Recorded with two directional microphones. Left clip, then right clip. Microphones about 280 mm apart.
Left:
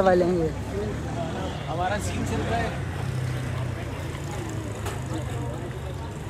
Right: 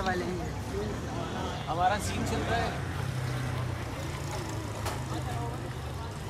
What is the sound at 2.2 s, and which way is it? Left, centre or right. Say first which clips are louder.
Speech: left 3 dB; right.